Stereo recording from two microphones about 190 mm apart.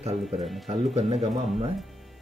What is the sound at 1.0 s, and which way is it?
Speech, 35° right (ahead or behind).